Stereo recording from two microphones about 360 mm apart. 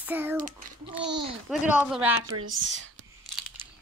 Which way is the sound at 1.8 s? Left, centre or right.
Centre.